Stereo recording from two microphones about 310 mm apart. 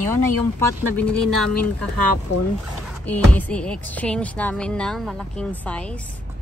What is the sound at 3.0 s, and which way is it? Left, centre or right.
Speech, centre.